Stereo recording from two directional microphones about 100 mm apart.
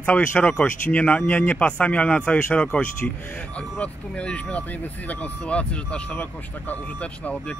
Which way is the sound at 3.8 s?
10° left (ahead or behind).